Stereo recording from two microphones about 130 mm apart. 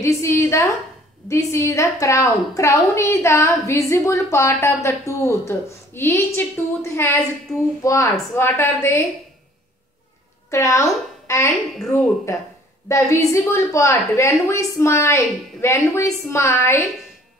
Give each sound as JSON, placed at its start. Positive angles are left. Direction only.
{"t": 0.0, "sound": "a woman's voice", "side_deg": 20}
{"t": 10.5, "sound": "a woman's voice", "side_deg": 25}